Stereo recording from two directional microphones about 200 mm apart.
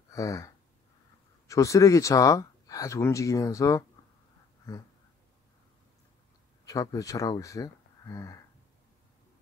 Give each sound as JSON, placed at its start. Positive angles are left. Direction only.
{"t": 0.1, "sound": "speech", "side_deg": 15}
{"t": 1.5, "sound": "speech", "side_deg": 15}
{"t": 6.6, "sound": "speech", "side_deg": 15}